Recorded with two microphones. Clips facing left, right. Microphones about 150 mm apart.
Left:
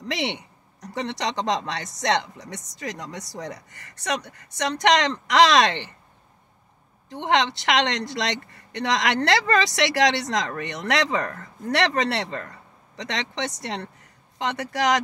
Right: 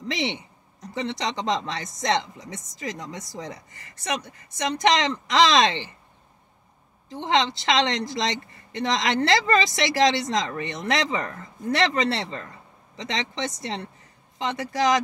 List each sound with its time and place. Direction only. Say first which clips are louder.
0.1 s speech: even; 70° left (ahead or behind)
7.1 s speech: left 1 dB; 65° left (ahead or behind)